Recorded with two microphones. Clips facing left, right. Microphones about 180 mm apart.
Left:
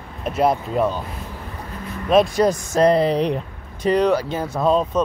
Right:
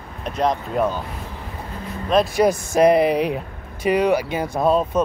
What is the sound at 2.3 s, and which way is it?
Speech, 10° right (ahead or behind).